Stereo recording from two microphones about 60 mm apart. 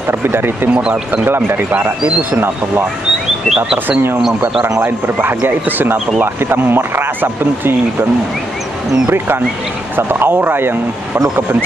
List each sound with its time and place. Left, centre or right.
0.2 s speech: right
1.7 s speech: right
2.3 s speech: right
3.5 s speech: centre
4.8 s speech: right
9.9 s speech: right